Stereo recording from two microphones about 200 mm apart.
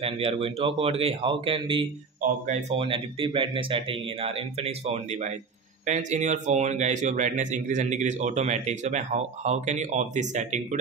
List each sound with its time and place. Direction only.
0.0 s a man's voice: 30° right (ahead or behind)